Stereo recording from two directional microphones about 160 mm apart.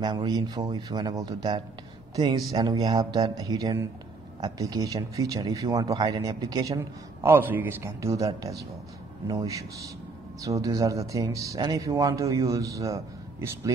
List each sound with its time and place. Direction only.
0.0 s speech: 25° right (ahead or behind)
7.2 s speech: 10° right (ahead or behind)